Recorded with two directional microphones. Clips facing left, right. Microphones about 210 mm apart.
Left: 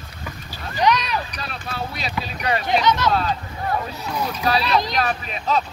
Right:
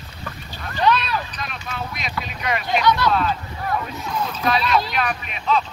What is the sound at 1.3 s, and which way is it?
Clip-clop, 35° left (ahead or behind).